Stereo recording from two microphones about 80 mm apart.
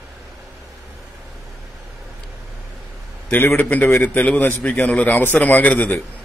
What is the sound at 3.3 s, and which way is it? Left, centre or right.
A man's voice, left.